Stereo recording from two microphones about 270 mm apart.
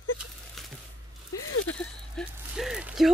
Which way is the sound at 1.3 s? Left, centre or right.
Left.